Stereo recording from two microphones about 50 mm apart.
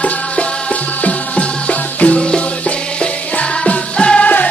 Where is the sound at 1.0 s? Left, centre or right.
Left.